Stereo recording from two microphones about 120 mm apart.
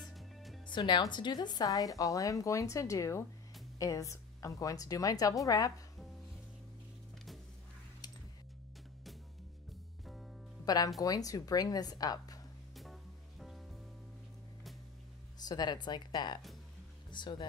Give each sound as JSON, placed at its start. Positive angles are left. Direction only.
{"t": 0.0, "sound": "music", "side_deg": 0}
{"t": 0.7, "sound": "a woman's voice", "side_deg": 40}
{"t": 10.6, "sound": "music", "side_deg": 35}
{"t": 11.0, "sound": "speech", "side_deg": 30}
{"t": 12.7, "sound": "music", "side_deg": 0}
{"t": 15.3, "sound": "speech", "side_deg": 35}